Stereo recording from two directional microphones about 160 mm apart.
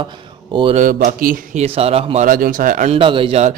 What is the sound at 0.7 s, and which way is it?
Speech, 55° right (ahead or behind).